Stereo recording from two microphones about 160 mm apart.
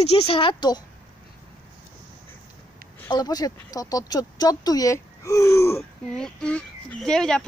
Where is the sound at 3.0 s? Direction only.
25° left (ahead or behind).